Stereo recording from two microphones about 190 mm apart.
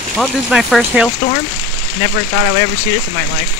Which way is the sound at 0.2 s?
Centre (ahead or behind).